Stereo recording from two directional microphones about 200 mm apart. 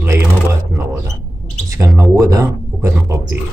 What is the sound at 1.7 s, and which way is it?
Speech, 15° right (ahead or behind).